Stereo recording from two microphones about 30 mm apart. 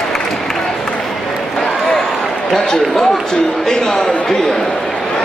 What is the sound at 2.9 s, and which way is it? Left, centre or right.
Speech, centre.